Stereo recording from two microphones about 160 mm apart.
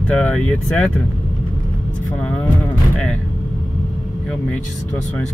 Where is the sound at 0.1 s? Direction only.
10° left (ahead or behind).